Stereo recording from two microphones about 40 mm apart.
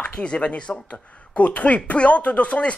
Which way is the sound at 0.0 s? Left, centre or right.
Left.